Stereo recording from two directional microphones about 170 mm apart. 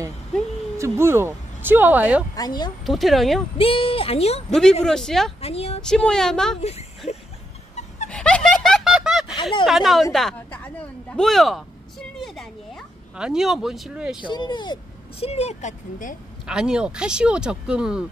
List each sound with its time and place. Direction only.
0.7 s speech: 15° right (ahead or behind)
2.3 s speech: 25° left (ahead or behind)
2.8 s speech: centre (ahead or behind)
3.5 s speech: 35° left (ahead or behind)
4.5 s speech: 5° left (ahead or behind)
5.4 s speech: 35° left (ahead or behind)
5.8 s speech: 5° left (ahead or behind)
6.6 s speech: 40° left (ahead or behind)
8.1 s snicker: 5° left (ahead or behind)
9.3 s a sound: 30° left (ahead or behind)
9.7 s a woman's voice: centre (ahead or behind)
12.2 s a sound: centre (ahead or behind)
14.3 s speech: 25° left (ahead or behind); by 16.2 s 45° left (ahead or behind)
16.4 s speech: 5° right (ahead or behind)